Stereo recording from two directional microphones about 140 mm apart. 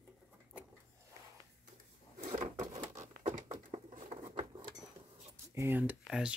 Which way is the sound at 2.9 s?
65° right (ahead or behind).